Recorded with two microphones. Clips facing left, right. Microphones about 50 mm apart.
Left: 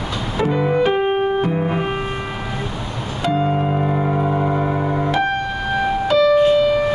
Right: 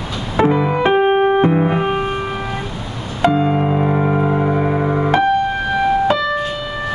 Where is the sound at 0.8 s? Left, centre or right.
Right.